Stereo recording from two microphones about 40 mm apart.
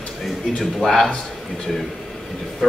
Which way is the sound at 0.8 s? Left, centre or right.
Centre.